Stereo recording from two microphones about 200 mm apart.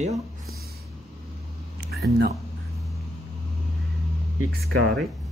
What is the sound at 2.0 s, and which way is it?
Speech, 55° right (ahead or behind).